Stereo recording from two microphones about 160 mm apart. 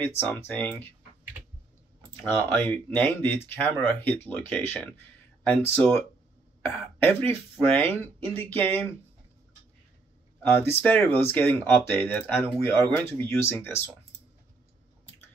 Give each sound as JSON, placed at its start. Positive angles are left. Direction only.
{"t": 0.2, "sound": "speech", "side_deg": 15}
{"t": 2.5, "sound": "speech", "side_deg": 10}
{"t": 10.4, "sound": "speech", "side_deg": 15}